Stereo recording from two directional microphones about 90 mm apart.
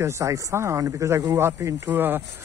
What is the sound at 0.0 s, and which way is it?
Speech, 35° right (ahead or behind).